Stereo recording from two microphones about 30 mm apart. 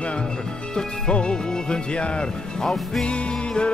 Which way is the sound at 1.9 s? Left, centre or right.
Left.